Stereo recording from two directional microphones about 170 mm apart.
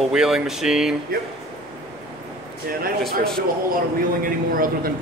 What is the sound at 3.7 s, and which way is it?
Speech, 55° right (ahead or behind).